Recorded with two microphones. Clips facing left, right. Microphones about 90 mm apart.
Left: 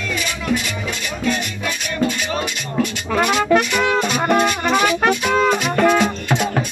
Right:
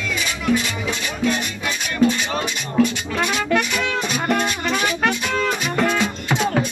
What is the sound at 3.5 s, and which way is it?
Music, 55° left (ahead or behind).